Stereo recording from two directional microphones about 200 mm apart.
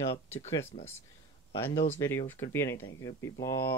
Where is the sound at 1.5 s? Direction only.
15° left (ahead or behind).